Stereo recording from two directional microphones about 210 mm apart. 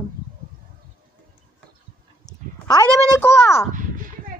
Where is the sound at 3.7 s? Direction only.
40° right (ahead or behind).